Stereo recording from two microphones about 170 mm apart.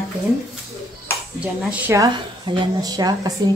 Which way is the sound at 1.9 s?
20° right (ahead or behind).